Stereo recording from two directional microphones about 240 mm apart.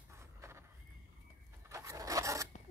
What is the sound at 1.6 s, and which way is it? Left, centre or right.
Zipper, centre.